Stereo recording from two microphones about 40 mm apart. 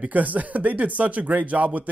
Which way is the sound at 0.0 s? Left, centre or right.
Right.